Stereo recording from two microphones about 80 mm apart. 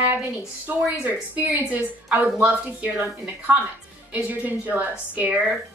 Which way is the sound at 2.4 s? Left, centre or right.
Centre.